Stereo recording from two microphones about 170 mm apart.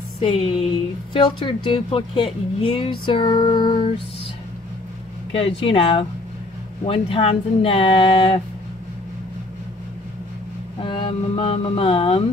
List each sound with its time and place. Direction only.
0.2 s speech: 30° left (ahead or behind)
5.4 s speech: 35° left (ahead or behind)
10.8 s speech: 30° left (ahead or behind)